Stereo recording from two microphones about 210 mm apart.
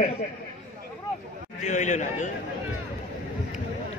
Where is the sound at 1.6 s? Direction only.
35° left (ahead or behind).